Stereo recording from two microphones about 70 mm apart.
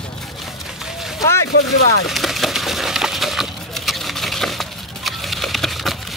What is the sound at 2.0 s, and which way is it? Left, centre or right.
Wood, centre.